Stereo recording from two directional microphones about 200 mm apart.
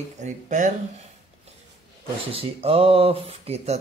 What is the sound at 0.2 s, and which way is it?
Speech, 40° right (ahead or behind).